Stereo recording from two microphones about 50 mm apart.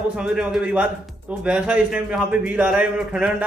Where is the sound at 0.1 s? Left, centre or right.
Centre.